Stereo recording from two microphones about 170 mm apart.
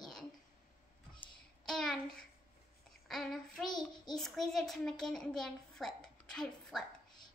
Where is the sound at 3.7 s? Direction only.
25° left (ahead or behind).